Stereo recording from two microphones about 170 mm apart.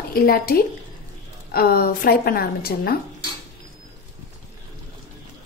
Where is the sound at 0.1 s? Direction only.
65° left (ahead or behind).